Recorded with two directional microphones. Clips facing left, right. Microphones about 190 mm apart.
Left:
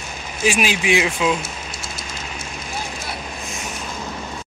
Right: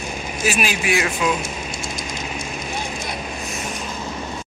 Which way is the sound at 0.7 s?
90° left.